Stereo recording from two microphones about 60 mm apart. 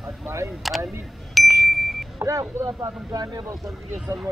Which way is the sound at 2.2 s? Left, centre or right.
Right.